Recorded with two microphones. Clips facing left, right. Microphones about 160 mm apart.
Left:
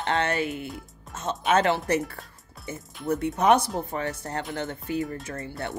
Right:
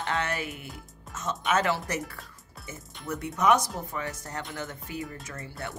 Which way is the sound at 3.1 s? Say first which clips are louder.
Left 3 dB; 30° left (ahead or behind).